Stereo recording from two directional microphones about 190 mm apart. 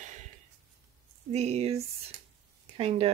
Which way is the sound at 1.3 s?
35° right (ahead or behind).